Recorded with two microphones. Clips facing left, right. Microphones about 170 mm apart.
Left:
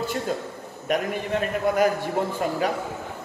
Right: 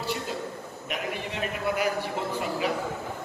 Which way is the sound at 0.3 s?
50° left (ahead or behind).